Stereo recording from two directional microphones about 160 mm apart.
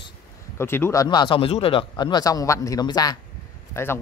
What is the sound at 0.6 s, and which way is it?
Speech, 15° left (ahead or behind).